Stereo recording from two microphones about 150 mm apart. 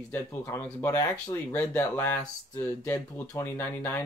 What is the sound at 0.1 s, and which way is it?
Speech, 15° left (ahead or behind).